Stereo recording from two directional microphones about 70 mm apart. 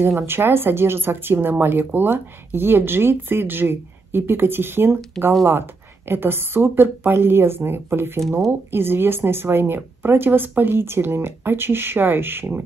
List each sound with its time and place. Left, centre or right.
0.2 s speech: right
6.0 s speech: right